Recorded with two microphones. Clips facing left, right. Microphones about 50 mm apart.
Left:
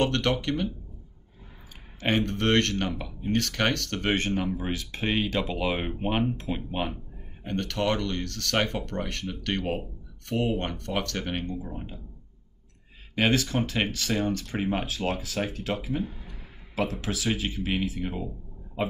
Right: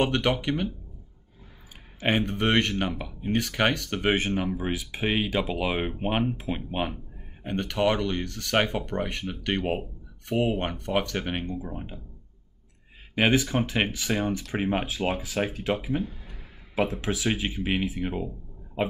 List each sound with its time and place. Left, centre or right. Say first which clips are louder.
0.0 s speech: right 1 dB; centre
2.0 s speech: right 1 dB; centre
7.4 s speech: right 2 dB; centre
13.1 s speech: right 2 dB; centre
17.0 s speech: right 2 dB; right